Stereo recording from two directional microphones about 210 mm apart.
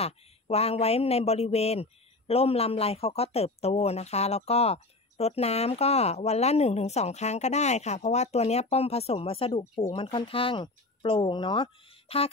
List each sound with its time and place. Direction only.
0.0 s speech: 30° left (ahead or behind)